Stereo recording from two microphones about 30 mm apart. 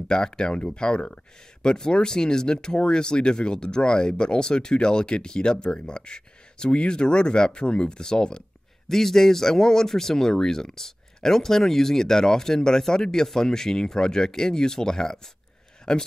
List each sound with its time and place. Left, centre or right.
0.1 s speech: left
8.8 s speech: centre